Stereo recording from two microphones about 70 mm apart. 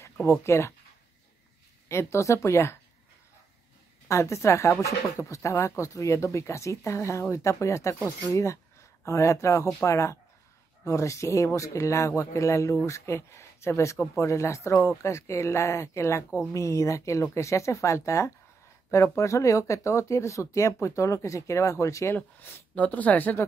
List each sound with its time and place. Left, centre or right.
0.4 s speech: left
1.9 s speech: left
4.1 s speech: left
22.1 s speech: left